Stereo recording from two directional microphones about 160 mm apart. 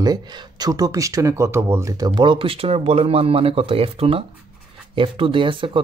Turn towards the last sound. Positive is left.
turn(degrees=-30)  # may be behind; listen again after turning